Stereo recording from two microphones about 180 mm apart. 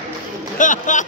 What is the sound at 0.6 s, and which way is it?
Speech, 45° left (ahead or behind).